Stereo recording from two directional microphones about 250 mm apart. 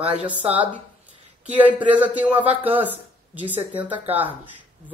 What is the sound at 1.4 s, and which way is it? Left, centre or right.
A woman's voice, centre.